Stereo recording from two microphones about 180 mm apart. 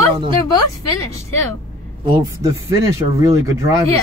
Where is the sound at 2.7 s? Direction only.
15° right (ahead or behind).